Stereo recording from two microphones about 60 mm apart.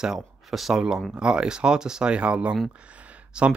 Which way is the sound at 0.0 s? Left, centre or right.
Centre.